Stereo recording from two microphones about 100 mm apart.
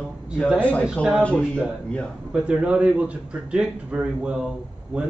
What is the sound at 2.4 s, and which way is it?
A man's voice, 10° right (ahead or behind).